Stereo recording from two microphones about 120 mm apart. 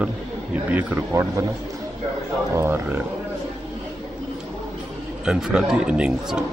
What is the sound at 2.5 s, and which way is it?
Speech, 20° right (ahead or behind).